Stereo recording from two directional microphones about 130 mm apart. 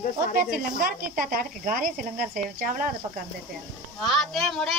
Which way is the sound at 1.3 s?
90° right.